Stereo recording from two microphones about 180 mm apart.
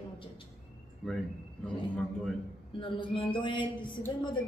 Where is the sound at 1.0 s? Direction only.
Centre (ahead or behind).